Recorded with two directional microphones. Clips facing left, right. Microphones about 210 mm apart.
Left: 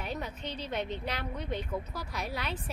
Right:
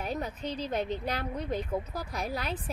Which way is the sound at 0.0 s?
40° right (ahead or behind).